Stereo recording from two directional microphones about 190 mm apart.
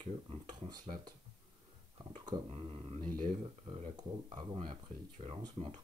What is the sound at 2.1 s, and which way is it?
Speech, 25° right (ahead or behind).